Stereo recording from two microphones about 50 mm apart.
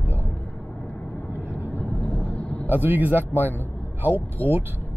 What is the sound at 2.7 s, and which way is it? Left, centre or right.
Speech, right.